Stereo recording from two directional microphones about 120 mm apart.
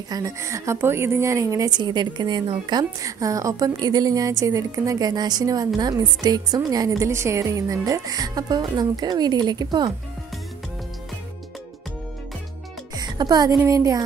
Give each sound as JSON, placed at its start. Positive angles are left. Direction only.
{"t": 0.1, "sound": "a woman's voice", "side_deg": -25}
{"t": 12.9, "sound": "music", "side_deg": -35}
{"t": 13.6, "sound": "a woman's voice", "side_deg": -25}